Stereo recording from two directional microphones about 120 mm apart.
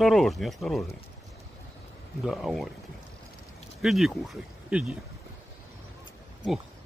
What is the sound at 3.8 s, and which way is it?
Speech, centre (ahead or behind).